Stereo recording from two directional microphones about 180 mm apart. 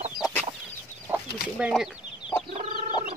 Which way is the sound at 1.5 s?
5° right (ahead or behind).